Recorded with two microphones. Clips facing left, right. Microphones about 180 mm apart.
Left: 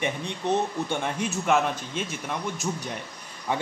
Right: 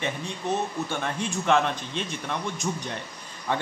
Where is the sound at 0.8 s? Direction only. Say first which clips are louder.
Left 1 dB; 15° left (ahead or behind).